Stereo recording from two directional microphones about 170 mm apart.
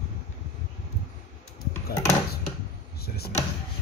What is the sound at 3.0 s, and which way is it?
Speech, 65° left (ahead or behind).